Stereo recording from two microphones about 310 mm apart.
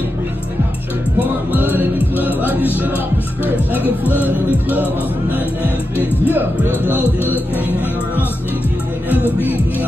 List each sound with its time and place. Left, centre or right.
1.2 s music: centre
6.2 s speech: centre